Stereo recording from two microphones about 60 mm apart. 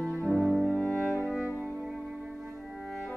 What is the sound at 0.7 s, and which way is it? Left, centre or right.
Music, centre.